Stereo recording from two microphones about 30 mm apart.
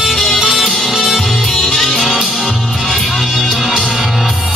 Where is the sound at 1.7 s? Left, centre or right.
Centre.